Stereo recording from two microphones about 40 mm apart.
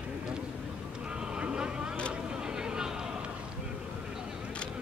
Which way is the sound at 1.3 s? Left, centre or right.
Right.